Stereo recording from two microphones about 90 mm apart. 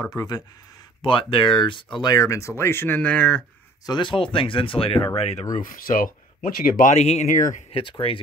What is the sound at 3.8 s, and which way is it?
Speech, 60° left (ahead or behind).